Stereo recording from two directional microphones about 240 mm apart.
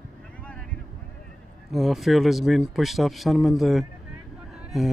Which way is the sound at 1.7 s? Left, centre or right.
Centre.